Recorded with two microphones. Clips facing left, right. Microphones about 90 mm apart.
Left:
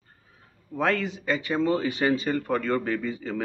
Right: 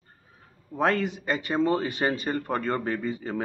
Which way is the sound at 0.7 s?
35° right (ahead or behind).